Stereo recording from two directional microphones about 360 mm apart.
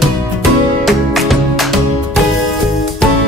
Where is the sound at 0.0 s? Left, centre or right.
Centre.